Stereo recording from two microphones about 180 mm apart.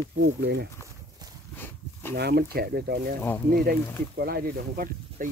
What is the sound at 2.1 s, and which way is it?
Speech, 65° right (ahead or behind).